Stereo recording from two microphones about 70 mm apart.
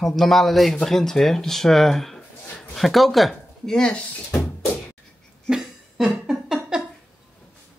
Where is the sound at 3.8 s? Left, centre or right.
Centre.